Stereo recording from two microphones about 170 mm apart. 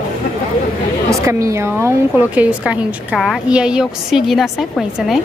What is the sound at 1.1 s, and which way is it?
A woman's voice, 15° right (ahead or behind).